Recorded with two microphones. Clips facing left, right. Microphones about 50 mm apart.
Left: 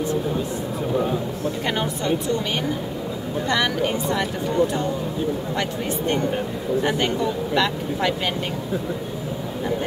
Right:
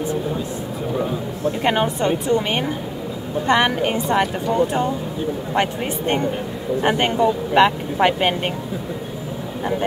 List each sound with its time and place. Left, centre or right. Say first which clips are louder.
1.6 s speech: right 8 dB; right
3.4 s speech: right 5 dB; right
5.5 s speech: right 4 dB; right